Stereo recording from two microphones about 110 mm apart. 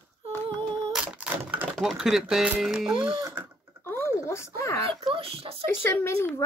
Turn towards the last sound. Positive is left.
turn(degrees=20)  # may be behind; listen again after turning